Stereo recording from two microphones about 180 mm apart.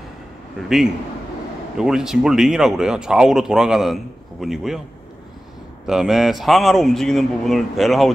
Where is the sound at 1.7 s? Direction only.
5° right (ahead or behind).